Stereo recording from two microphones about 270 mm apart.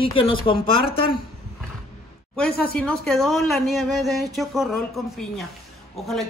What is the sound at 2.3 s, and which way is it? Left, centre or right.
Speech, centre.